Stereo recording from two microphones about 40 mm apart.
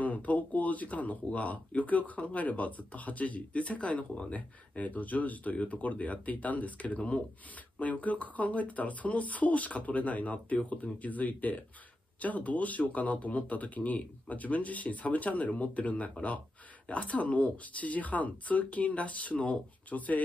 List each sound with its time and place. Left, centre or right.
0.0 s speech: left